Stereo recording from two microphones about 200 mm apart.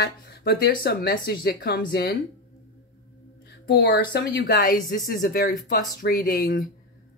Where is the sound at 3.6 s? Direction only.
50° left (ahead or behind).